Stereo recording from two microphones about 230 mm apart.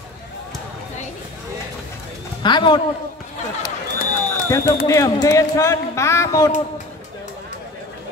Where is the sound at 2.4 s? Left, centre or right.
Centre.